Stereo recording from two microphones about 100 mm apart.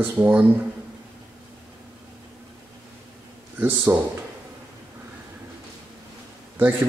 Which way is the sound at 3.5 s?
20° right (ahead or behind).